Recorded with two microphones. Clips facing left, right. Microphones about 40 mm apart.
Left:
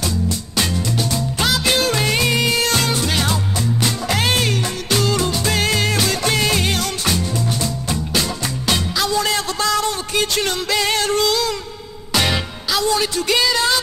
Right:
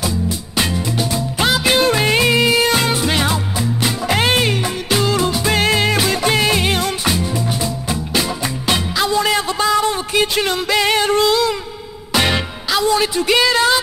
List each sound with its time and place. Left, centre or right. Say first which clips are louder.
0.6 s music: right 2 dB; centre